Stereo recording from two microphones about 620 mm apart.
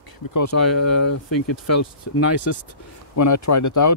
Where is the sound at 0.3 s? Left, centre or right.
Left.